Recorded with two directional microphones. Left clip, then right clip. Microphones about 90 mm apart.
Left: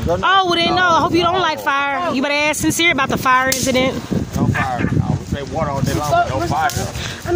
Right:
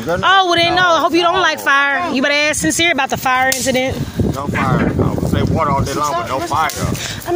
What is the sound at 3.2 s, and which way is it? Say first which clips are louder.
Speech: left 1 dB; 35° left (ahead or behind).